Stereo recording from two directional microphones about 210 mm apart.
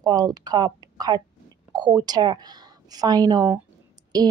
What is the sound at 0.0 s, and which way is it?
A woman's voice, 20° right (ahead or behind).